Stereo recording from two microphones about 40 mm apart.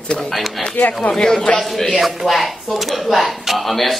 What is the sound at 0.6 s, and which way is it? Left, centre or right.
A man's voice, left.